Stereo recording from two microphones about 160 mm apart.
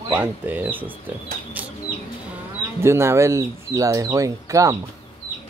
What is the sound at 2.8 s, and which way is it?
Speech, 15° right (ahead or behind).